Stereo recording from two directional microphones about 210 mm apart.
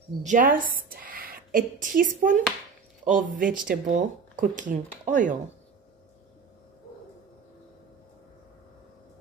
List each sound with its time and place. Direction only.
0.2 s a woman's voice: 40° right (ahead or behind)